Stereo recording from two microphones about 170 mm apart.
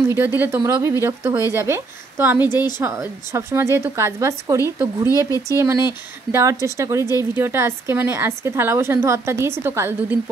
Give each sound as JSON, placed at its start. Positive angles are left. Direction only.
{"t": 0.2, "sound": "a woman's voice", "side_deg": -10}